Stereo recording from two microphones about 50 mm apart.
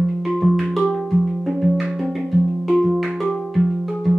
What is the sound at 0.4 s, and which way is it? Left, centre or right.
Music, centre.